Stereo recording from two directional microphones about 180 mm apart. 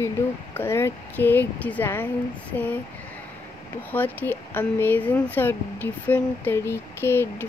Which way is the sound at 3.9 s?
10° left (ahead or behind).